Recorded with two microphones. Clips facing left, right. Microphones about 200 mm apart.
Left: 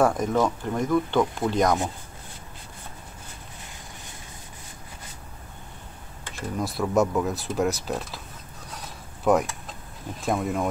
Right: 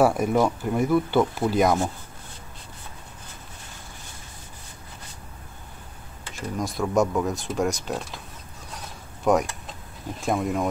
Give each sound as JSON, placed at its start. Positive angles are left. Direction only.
{"t": 0.0, "sound": "speech", "side_deg": -10}
{"t": 6.6, "sound": "speech", "side_deg": 0}
{"t": 9.2, "sound": "speech", "side_deg": 0}